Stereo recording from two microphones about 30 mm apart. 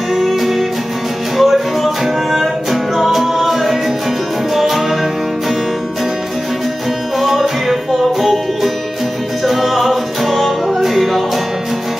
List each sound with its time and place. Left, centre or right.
0.1 s music: centre
7.2 s music: centre
9.4 s music: centre